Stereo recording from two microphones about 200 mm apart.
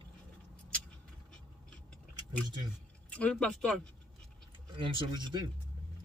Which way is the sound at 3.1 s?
5° left (ahead or behind).